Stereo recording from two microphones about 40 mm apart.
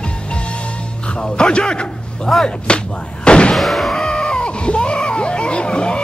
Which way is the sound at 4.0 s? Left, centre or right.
Centre.